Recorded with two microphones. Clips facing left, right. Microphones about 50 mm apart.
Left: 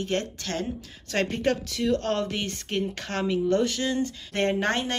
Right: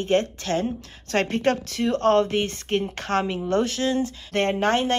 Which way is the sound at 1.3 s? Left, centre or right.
Right.